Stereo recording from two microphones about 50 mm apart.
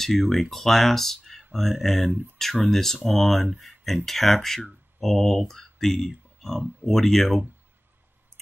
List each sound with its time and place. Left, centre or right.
0.0 s speech: centre
2.0 s speech: right
2.3 s speech: centre